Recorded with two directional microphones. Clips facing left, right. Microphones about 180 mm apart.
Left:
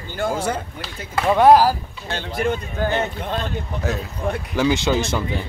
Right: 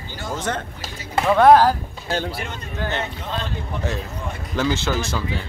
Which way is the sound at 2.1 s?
40° right (ahead or behind).